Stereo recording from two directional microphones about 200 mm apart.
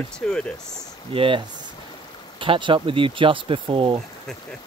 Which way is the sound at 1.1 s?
25° right (ahead or behind).